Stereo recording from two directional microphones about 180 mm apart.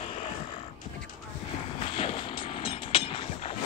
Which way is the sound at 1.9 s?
30° left (ahead or behind).